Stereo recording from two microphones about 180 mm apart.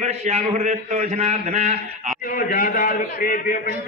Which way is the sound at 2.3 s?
50° left (ahead or behind).